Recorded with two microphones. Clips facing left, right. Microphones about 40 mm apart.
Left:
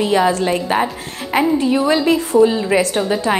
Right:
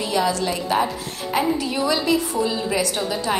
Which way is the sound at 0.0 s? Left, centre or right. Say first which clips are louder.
Left 6 dB; left.